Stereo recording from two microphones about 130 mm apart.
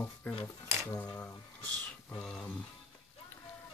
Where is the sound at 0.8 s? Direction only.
25° left (ahead or behind).